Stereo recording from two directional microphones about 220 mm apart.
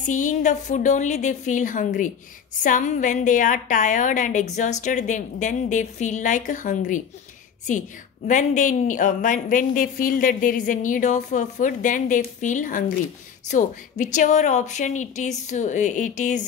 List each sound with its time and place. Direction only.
0.0 s a woman's voice: 35° left (ahead or behind)
8.3 s a woman's voice: 35° left (ahead or behind)